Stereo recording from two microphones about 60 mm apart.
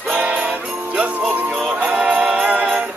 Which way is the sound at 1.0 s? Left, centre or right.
Right.